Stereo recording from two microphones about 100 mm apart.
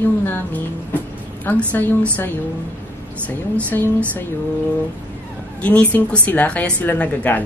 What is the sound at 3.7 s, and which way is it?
Speech, 15° left (ahead or behind).